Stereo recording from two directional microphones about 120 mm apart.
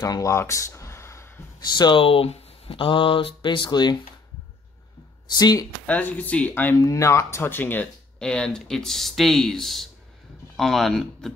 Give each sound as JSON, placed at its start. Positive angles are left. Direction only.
{"t": 0.0, "sound": "a sound", "side_deg": 30}
{"t": 1.6, "sound": "speech", "side_deg": 35}
{"t": 5.3, "sound": "speech", "side_deg": 35}
{"t": 5.9, "sound": "speech", "side_deg": 15}
{"t": 6.8, "sound": "speech", "side_deg": 25}